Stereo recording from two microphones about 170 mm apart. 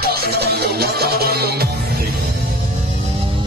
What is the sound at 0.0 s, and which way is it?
Music, 70° right (ahead or behind).